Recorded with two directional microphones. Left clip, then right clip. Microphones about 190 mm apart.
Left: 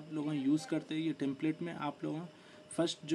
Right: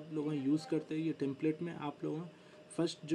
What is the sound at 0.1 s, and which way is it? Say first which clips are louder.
Speech: left 1 dB; 15° left (ahead or behind).